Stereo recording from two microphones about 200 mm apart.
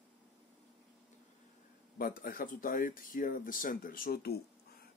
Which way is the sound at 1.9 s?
45° left (ahead or behind).